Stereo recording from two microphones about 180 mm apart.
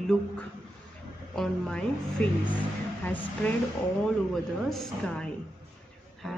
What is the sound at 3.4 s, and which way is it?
A woman's voice, 5° left (ahead or behind).